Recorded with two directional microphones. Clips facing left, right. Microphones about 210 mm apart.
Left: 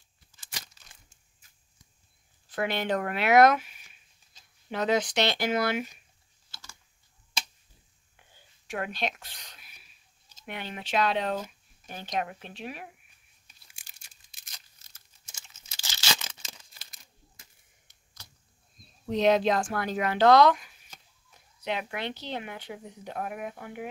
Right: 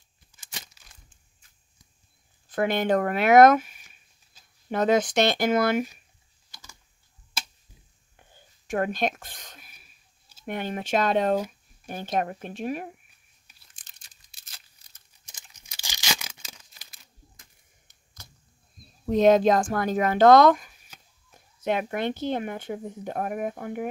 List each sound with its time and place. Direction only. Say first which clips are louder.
2.5 s speech: right 6 dB; 50° right (ahead or behind)
3.8 s a sound: right 2 dB; 10° right (ahead or behind)
4.6 s speech: right 5 dB; 50° right (ahead or behind)
6.5 s typing: even; 15° right (ahead or behind)
8.3 s a sound: right 7 dB; 45° right (ahead or behind)
10.4 s speech: right 8 dB; 45° right (ahead or behind)
13.7 s crumpling: left 2 dB; 10° left (ahead or behind)
15.0 s tearing: even; 15° right (ahead or behind)
17.8 s a sound: right 4 dB; 50° right (ahead or behind)
19.0 s speech: right 5 dB; 50° right (ahead or behind)